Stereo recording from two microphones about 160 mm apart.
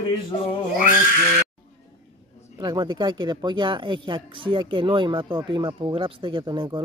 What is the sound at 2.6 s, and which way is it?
Speech, 25° right (ahead or behind).